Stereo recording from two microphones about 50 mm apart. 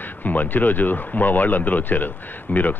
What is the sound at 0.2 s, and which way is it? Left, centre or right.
Speech, left.